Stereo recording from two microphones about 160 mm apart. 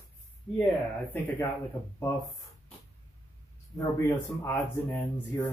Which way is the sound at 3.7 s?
20° left (ahead or behind).